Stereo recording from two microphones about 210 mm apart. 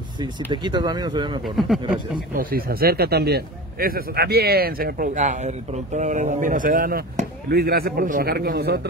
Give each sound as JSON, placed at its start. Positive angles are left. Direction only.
{"t": 0.5, "sound": "speech", "side_deg": -20}
{"t": 1.4, "sound": "speech", "side_deg": 0}
{"t": 2.3, "sound": "a man's voice", "side_deg": -45}